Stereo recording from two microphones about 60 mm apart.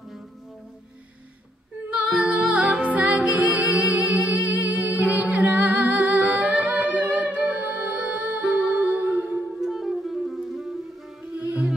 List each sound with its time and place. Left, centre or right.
2.1 s music: centre
9.6 s music: centre
11.3 s music: centre